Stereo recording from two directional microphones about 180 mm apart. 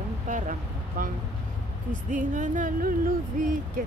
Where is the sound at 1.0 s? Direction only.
50° right (ahead or behind).